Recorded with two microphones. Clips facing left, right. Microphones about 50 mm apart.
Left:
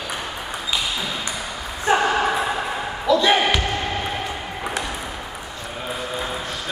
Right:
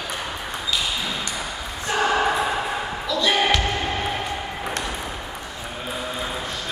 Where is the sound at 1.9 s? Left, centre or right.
Left.